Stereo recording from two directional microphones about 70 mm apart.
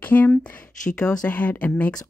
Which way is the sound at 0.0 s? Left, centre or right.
Left.